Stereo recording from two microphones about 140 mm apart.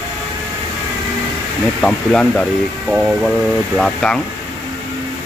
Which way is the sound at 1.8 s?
5° left (ahead or behind).